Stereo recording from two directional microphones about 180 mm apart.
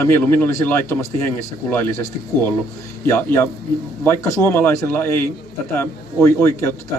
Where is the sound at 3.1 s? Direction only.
10° left (ahead or behind).